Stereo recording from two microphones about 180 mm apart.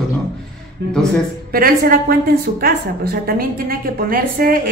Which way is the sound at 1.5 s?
55° right (ahead or behind).